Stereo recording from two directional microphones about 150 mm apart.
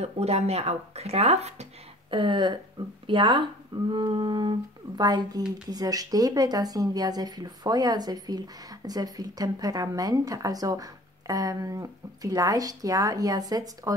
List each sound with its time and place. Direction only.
0.0 s speech: 45° right (ahead or behind); by 13.9 s 25° right (ahead or behind)